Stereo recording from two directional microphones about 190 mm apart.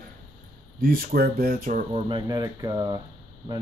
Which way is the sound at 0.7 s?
50° right (ahead or behind).